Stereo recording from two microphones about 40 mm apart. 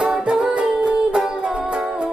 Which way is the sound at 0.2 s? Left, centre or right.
Right.